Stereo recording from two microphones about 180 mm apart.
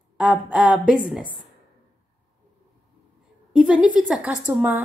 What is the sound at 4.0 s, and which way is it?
Speech, 5° right (ahead or behind).